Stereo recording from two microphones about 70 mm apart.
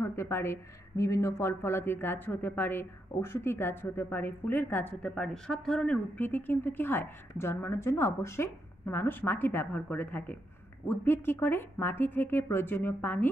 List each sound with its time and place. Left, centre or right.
0.0 s speech: left
5.1 s speech: centre
6.1 s speech: left